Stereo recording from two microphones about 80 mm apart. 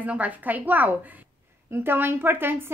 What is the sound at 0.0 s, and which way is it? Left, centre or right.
A woman's voice, centre.